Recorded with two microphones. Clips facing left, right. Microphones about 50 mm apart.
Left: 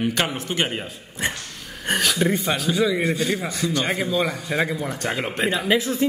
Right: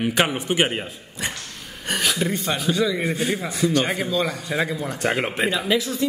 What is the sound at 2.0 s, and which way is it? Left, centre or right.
Speech, centre.